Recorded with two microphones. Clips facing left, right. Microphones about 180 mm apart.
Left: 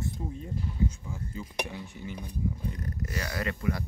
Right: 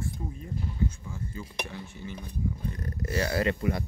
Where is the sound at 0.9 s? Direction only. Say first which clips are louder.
Even; 15° left (ahead or behind).